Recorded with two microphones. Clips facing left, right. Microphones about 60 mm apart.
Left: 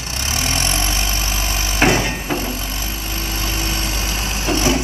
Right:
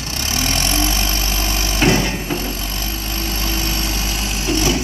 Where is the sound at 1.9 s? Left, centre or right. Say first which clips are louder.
Even; centre.